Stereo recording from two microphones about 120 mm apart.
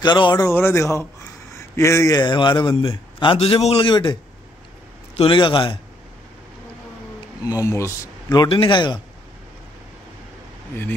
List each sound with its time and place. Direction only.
0.0 s speech: 40° left (ahead or behind)
0.4 s speech: 20° left (ahead or behind); by 2.7 s 40° left (ahead or behind)
2.7 s speech: 25° left (ahead or behind)
3.3 s a man's voice: 60° left (ahead or behind)
3.9 s a man's voice: 40° left (ahead or behind)
7.4 s speech: 25° left (ahead or behind)
8.5 s a man's voice: 45° left (ahead or behind)